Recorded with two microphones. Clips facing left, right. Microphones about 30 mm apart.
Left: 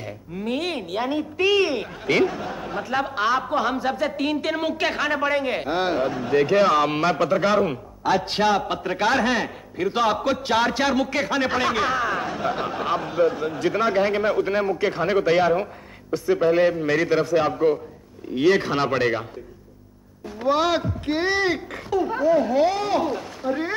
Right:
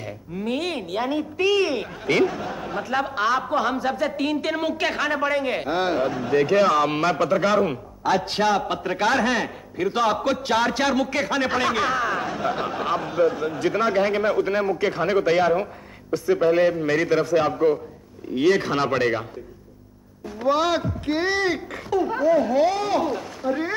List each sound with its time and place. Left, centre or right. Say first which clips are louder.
0.0 s a woman's voice: right 1 dB; centre
1.4 s speech: left 1 dB; centre
1.7 s a man's voice: even; centre
20.4 s a man's voice: even; centre
23.4 s speech: right 1 dB; left